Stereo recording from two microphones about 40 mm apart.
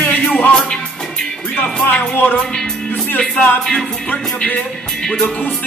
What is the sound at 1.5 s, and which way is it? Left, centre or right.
Music, left.